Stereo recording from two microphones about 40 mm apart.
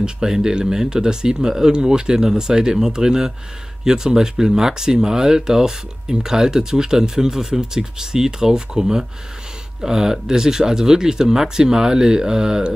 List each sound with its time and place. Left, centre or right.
0.0 s speech: centre